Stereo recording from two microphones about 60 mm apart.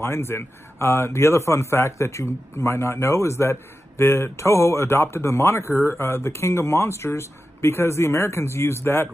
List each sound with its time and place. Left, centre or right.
0.0 s a man's voice: left